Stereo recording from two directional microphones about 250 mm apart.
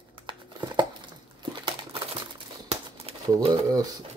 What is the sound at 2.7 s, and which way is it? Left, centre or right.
Typewriter, right.